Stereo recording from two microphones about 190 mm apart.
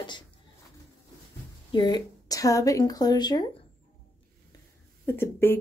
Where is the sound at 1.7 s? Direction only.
20° left (ahead or behind).